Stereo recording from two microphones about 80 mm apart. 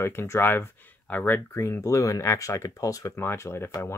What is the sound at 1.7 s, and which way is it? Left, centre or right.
Speech, left.